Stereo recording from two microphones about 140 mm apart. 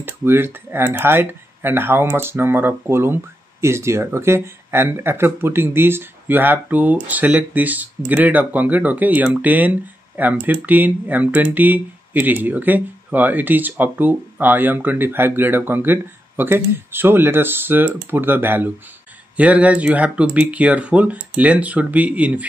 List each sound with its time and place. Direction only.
0.0 s speech: 15° right (ahead or behind)